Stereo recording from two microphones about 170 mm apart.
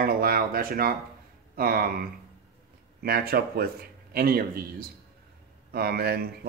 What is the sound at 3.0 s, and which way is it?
Speech, 65° right (ahead or behind).